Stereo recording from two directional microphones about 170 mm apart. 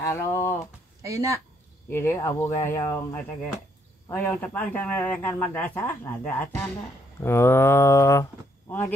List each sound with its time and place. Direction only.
0.0 s speech: 15° left (ahead or behind)
1.0 s speech: 20° right (ahead or behind)
1.9 s a man's voice: 15° left (ahead or behind)